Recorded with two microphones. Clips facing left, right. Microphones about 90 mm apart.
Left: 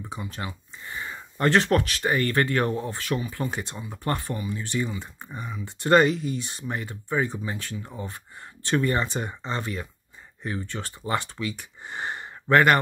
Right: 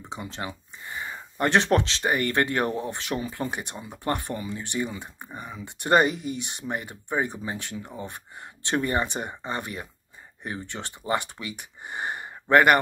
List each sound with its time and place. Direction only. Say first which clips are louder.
0.8 s speech: even; 20° right (ahead or behind)